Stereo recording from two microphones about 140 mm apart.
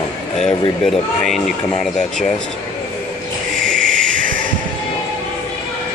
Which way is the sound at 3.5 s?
75° right (ahead or behind).